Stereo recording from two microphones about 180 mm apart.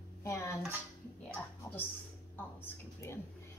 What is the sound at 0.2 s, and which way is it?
Speech, 15° left (ahead or behind).